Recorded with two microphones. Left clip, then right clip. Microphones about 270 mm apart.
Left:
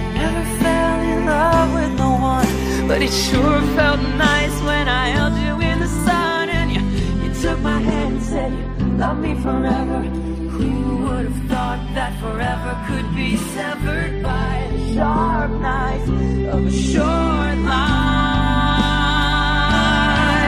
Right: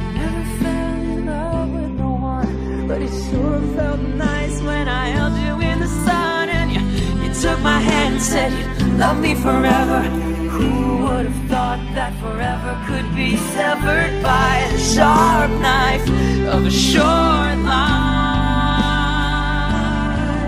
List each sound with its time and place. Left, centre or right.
0.6 s music: centre
1.4 s music: left
2.4 s music: left
3.8 s music: left
6.0 s music: centre
7.4 s music: right
8.9 s music: right
13.3 s music: centre
15.0 s music: right
16.7 s music: right; by 19.8 s centre
19.8 s music: centre